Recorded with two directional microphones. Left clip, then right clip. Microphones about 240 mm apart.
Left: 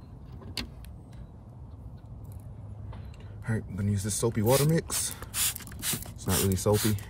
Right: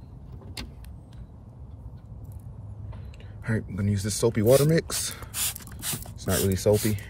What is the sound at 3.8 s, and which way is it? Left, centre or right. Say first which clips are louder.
Speech: right 3 dB; centre.